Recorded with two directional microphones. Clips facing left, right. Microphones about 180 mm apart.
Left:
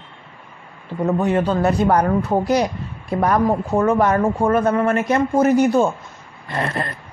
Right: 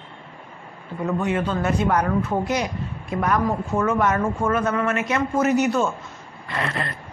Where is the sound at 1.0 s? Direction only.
35° left (ahead or behind).